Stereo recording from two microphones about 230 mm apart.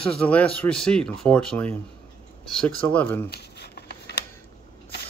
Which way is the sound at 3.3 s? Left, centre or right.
Left.